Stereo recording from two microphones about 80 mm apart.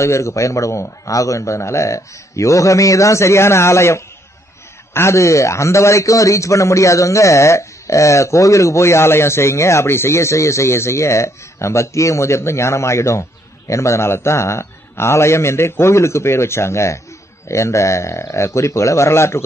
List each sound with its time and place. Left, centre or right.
0.0 s a man's voice: left